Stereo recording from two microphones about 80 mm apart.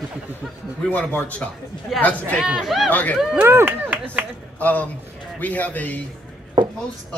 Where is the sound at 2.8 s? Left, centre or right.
Centre.